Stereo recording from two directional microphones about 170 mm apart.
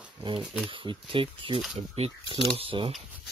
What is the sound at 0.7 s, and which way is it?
Speech, 30° right (ahead or behind).